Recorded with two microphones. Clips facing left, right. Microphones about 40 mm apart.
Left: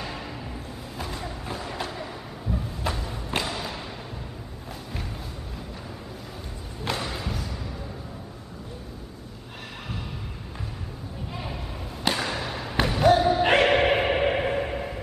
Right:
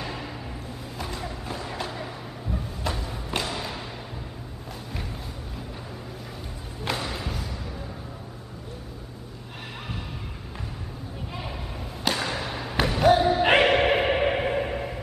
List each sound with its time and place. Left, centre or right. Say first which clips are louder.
0.0 s music: even; centre
2.9 s thump: left 1 dB; centre
6.8 s music: even; centre
11.3 s a sound: even; centre
12.0 s basketball bounce: even; centre
13.7 s a sound: even; centre